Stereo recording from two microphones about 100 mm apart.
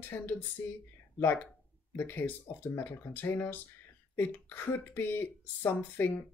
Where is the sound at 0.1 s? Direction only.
20° left (ahead or behind).